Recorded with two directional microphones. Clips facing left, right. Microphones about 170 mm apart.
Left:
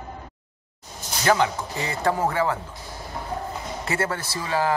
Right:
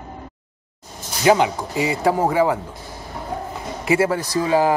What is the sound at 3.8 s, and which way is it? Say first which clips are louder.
Speech: right 9 dB; 10° right (ahead or behind).